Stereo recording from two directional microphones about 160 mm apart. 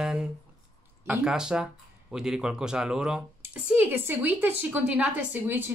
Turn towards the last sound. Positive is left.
turn(degrees=-10)  # may be behind; listen again after turning